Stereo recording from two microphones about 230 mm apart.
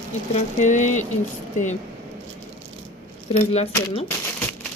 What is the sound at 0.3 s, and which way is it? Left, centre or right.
Speech, left.